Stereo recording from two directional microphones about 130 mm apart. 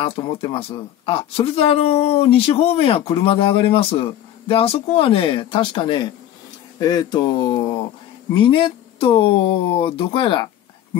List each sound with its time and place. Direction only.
0.0 s speech: 45° left (ahead or behind)